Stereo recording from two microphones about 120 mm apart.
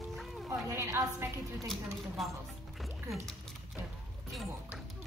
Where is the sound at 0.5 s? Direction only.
25° right (ahead or behind).